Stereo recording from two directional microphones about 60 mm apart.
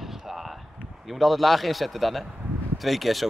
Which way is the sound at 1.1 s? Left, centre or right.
Centre.